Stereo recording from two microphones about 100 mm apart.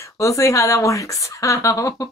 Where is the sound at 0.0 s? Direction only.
30° left (ahead or behind).